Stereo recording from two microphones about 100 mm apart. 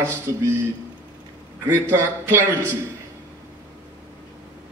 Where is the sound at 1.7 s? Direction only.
25° right (ahead or behind).